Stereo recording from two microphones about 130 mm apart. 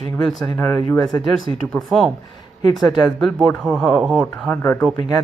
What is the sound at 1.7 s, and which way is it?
Speech, centre (ahead or behind).